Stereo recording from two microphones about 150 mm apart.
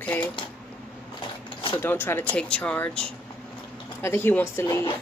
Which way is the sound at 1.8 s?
15° left (ahead or behind).